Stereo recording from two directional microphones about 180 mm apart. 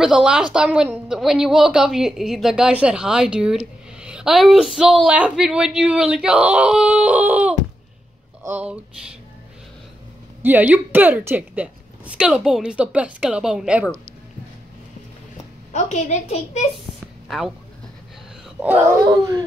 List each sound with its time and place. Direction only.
0.0 s a woman's voice: 5° right (ahead or behind)
10.4 s a woman's voice: 10° right (ahead or behind)
15.7 s a woman's voice: 40° left (ahead or behind)
19.0 s speech: 20° right (ahead or behind)